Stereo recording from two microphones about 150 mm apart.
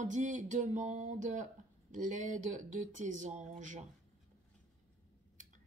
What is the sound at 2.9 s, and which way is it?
Speech, 55° right (ahead or behind).